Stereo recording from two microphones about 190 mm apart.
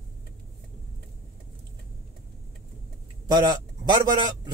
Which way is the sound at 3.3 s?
20° right (ahead or behind).